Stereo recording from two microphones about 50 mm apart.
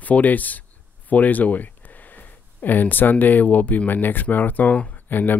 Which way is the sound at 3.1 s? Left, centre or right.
Left.